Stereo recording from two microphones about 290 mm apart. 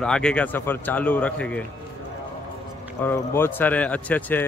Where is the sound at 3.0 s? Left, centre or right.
Centre.